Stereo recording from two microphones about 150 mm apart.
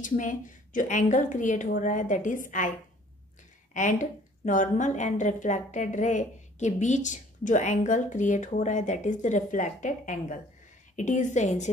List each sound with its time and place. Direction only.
0.0 s a woman's voice: 60° left (ahead or behind)
3.7 s a woman's voice: 55° left (ahead or behind)